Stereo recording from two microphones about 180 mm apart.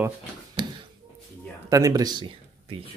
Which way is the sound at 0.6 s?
25° right (ahead or behind).